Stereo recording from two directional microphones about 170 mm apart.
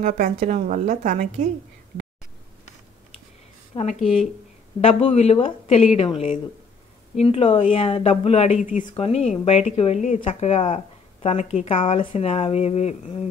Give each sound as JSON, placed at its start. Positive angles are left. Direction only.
{"t": 0.0, "sound": "a woman's voice", "side_deg": -50}
{"t": 3.9, "sound": "speech", "side_deg": 0}
{"t": 4.8, "sound": "speech", "side_deg": 35}